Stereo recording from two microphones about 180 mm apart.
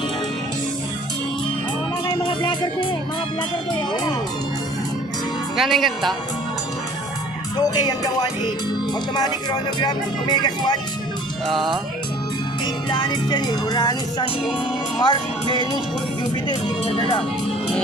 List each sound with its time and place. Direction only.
2.0 s music: 25° left (ahead or behind)
5.6 s speech: centre (ahead or behind)
7.7 s speech: 25° left (ahead or behind)
11.4 s speech: centre (ahead or behind)
12.9 s speech: 25° left (ahead or behind)